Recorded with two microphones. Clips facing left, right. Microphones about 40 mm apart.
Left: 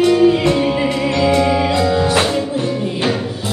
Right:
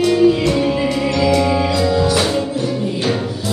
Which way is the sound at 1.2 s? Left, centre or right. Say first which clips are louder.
Left 1 dB; left.